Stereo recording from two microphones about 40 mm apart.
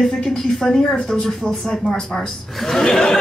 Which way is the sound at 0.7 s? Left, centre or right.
Left.